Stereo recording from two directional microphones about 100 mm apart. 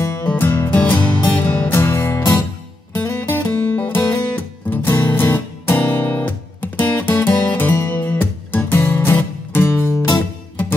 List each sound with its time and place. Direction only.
0.2 s music: 20° left (ahead or behind)